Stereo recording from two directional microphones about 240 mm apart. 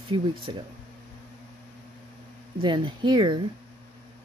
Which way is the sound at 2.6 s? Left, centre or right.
Right.